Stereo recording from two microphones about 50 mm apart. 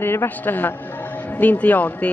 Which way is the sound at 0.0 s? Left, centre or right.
Left.